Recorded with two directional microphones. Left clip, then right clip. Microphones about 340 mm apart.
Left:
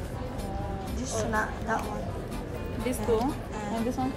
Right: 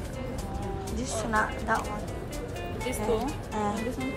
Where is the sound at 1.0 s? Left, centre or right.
Centre.